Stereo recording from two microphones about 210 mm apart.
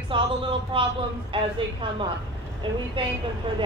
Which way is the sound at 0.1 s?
25° right (ahead or behind).